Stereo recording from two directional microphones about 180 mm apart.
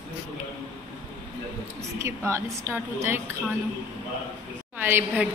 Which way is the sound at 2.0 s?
15° right (ahead or behind).